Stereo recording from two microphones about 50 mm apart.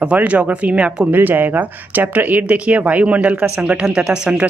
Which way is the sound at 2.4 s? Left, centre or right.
Right.